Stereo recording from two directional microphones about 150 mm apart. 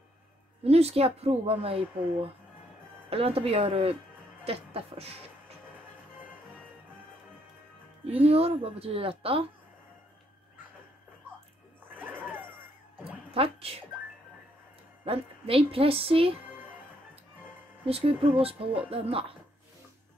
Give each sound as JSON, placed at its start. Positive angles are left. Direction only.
{"t": 0.7, "sound": "a woman's voice", "side_deg": -45}
{"t": 8.0, "sound": "a woman's voice", "side_deg": -40}
{"t": 11.9, "sound": "music", "side_deg": -10}
{"t": 13.3, "sound": "a woman's voice", "side_deg": -40}
{"t": 15.0, "sound": "a woman's voice", "side_deg": -40}
{"t": 17.8, "sound": "a woman's voice", "side_deg": -40}